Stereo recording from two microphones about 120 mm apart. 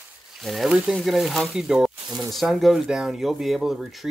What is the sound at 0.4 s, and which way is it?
Speech, centre (ahead or behind).